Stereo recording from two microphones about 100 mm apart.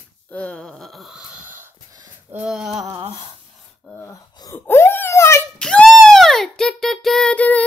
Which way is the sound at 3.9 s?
25° left (ahead or behind).